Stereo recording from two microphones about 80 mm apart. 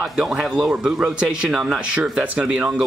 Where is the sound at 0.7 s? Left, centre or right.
Centre.